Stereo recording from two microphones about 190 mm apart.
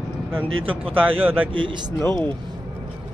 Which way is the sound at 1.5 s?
25° right (ahead or behind).